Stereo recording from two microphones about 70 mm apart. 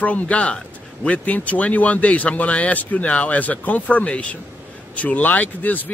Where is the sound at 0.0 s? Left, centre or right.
Left.